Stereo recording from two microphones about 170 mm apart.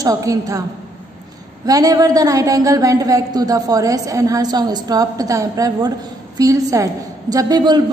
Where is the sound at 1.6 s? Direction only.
20° right (ahead or behind).